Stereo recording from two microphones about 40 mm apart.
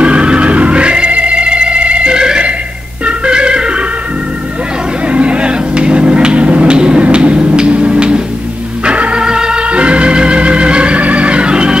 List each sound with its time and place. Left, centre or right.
0.0 s organ: right
5.1 s music: right
8.8 s organ: right